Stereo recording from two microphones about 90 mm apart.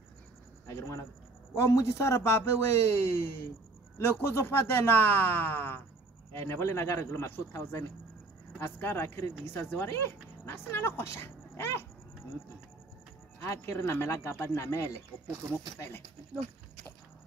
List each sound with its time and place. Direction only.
0.7 s a man's voice: 30° left (ahead or behind)
13.5 s a man's voice: 35° left (ahead or behind)